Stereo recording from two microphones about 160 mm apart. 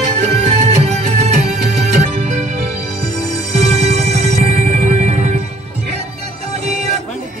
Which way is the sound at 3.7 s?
45° right (ahead or behind).